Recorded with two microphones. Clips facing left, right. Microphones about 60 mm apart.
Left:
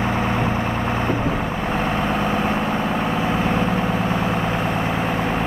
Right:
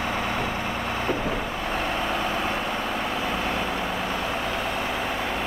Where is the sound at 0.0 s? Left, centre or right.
Left.